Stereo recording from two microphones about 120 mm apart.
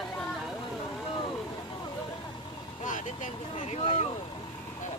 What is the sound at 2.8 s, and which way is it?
Vehicle, 90° left.